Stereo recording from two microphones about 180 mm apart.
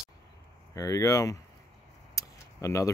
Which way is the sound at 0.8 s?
20° left (ahead or behind).